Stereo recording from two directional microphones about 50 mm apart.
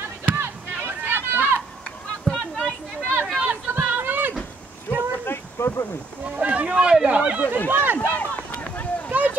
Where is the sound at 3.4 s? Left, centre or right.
Right.